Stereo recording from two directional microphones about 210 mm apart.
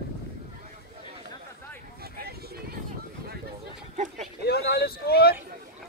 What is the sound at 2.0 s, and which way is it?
Vehicle, 50° right (ahead or behind).